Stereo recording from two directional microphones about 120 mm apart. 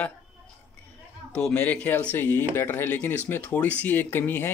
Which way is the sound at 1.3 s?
10° left (ahead or behind).